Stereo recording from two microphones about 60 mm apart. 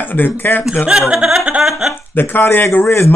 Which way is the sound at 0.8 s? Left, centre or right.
Centre.